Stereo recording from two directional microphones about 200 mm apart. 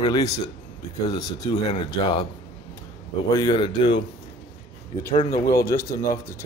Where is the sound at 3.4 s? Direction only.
20° left (ahead or behind).